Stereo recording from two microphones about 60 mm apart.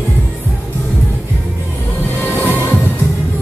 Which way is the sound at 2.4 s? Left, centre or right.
Left.